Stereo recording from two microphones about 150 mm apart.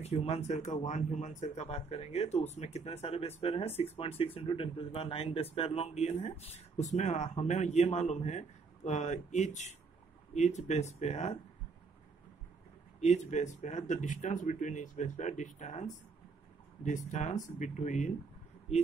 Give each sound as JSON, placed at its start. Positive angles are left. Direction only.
{"t": 0.0, "sound": "speech", "side_deg": 45}
{"t": 13.0, "sound": "speech", "side_deg": 50}